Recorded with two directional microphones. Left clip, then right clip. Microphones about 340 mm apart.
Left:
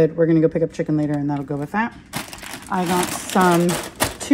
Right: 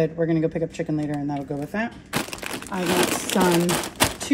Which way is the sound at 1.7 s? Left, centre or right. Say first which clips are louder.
Left 5 dB; centre.